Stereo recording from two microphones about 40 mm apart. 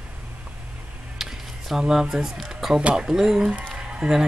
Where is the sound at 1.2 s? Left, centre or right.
Centre.